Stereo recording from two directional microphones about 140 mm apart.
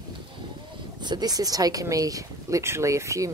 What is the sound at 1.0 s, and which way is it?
Speech, 30° right (ahead or behind).